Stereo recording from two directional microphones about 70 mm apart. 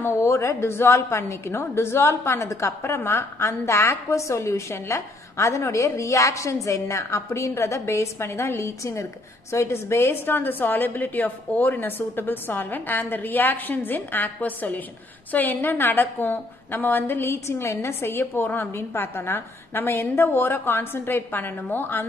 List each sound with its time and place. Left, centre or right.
0.0 s a woman's voice: left